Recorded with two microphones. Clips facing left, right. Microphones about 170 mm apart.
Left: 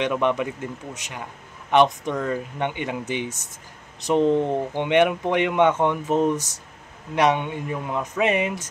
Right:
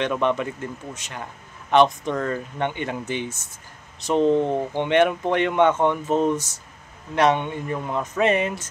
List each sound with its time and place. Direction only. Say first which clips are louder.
0.0 s speech: even; 15° left (ahead or behind)
4.2 s speech: right 1 dB; 15° right (ahead or behind)
4.7 s speech: even; 15° left (ahead or behind)